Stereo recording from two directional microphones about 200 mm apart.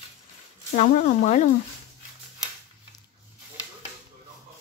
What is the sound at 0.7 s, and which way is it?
Speech, 35° left (ahead or behind).